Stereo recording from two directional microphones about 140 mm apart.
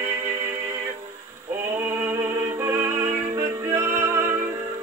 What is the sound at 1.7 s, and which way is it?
Music, 15° right (ahead or behind).